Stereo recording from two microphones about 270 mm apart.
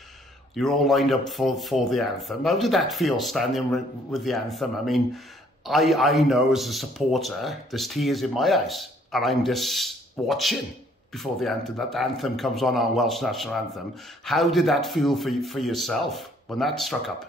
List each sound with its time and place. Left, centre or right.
0.6 s speech: centre